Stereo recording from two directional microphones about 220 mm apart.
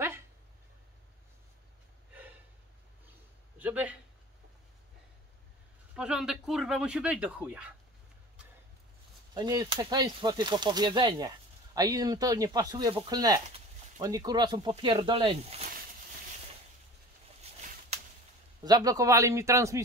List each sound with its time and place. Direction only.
3.5 s a man's voice: 5° right (ahead or behind)
5.9 s speech: 5° right (ahead or behind)
9.3 s speech: 20° right (ahead or behind)
18.6 s speech: 15° right (ahead or behind)